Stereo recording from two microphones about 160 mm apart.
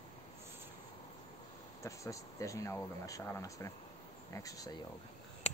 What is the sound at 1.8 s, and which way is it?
Speech, 20° left (ahead or behind).